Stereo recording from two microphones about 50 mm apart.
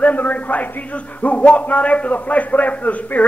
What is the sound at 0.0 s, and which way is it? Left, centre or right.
A man's voice, left.